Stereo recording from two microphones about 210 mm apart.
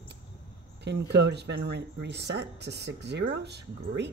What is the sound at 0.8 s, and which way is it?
Speech, 55° right (ahead or behind).